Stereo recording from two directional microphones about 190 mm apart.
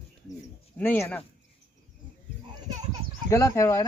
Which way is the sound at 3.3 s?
15° left (ahead or behind).